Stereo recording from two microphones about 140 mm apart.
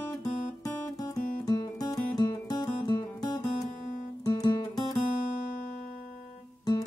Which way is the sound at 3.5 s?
60° left (ahead or behind).